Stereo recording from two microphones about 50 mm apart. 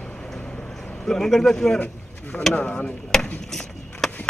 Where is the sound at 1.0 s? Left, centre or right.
Centre.